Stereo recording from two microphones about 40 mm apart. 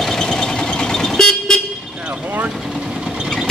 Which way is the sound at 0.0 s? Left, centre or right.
Centre.